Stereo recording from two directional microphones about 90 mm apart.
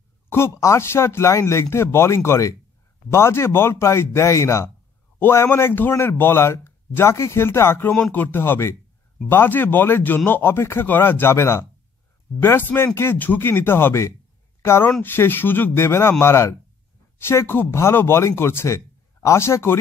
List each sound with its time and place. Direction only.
0.3 s a man's voice: 30° left (ahead or behind)
7.9 s a man's voice: 15° left (ahead or behind)